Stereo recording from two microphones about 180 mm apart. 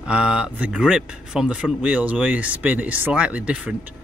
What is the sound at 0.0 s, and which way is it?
Speech, 5° right (ahead or behind).